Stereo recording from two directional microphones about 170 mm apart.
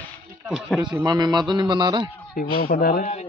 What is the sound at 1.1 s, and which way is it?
A man's voice, 25° right (ahead or behind).